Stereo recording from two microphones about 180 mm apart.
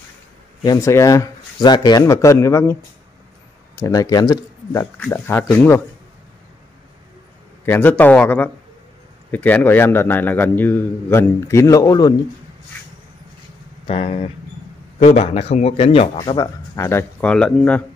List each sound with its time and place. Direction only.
0.7 s a man's voice: 15° left (ahead or behind)
7.6 s a man's voice: 10° left (ahead or behind)
13.8 s speech: 30° left (ahead or behind); by 17.8 s 5° left (ahead or behind)